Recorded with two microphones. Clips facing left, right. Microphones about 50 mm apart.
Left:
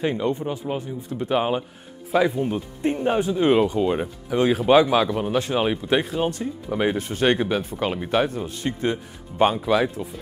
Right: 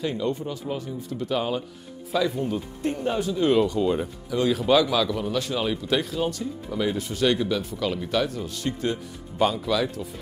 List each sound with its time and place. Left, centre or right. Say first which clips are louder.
0.0 s speech: left 3 dB; left